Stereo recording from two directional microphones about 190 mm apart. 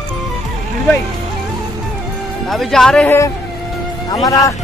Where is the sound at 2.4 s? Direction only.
Centre (ahead or behind).